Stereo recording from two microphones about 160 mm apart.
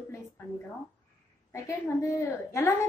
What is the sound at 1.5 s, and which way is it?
A woman's voice, 20° left (ahead or behind).